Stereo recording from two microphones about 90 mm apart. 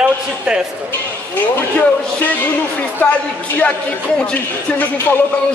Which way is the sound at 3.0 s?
20° left (ahead or behind).